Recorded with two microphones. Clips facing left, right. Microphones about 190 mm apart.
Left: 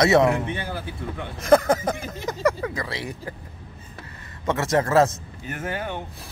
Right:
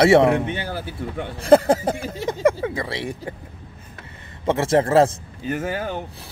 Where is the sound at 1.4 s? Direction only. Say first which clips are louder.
Right 3 dB; 30° right (ahead or behind).